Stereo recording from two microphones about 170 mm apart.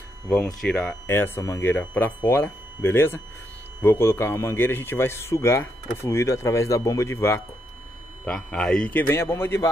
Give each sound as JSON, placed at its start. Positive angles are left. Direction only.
{"t": 0.3, "sound": "a man's voice", "side_deg": 5}
{"t": 8.3, "sound": "a man's voice", "side_deg": 5}